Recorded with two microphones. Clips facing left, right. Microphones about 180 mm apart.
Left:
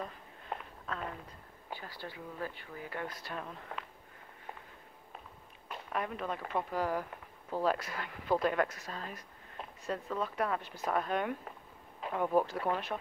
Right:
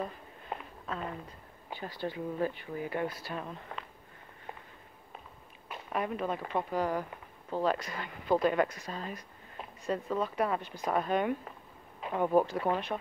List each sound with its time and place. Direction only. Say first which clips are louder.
0.0 s a sound: right 5 dB; 5° right (ahead or behind)
1.8 s speech: right 13 dB; 20° right (ahead or behind)
3.2 s speech: right 3 dB; 5° right (ahead or behind)
5.7 s speech: right 3 dB; 5° right (ahead or behind)